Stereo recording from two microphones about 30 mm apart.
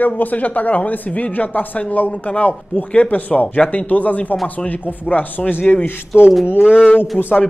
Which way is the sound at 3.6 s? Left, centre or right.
Left.